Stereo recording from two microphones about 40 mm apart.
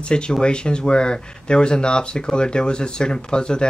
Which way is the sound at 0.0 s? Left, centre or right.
Left.